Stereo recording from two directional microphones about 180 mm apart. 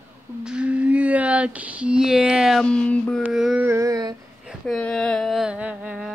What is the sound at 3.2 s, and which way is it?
Carnatic music, 5° right (ahead or behind).